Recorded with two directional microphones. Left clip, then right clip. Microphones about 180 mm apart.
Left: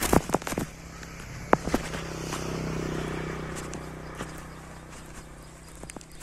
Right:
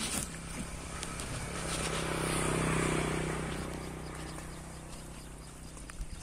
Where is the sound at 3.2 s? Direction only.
30° left (ahead or behind).